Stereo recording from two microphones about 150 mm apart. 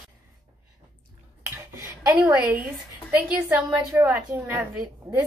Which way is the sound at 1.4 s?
15° right (ahead or behind).